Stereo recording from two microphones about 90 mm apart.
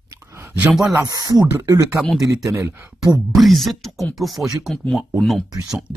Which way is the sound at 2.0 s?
Centre (ahead or behind).